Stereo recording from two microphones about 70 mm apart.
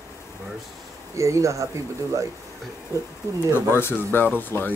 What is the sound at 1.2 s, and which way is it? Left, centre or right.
Speech, right.